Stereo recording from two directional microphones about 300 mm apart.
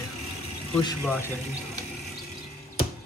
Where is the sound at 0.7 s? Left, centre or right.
Centre.